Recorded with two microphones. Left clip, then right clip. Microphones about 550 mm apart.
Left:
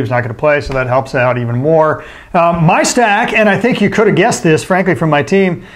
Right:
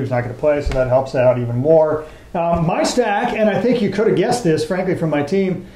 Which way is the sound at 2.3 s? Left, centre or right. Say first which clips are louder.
Left 8 dB; left.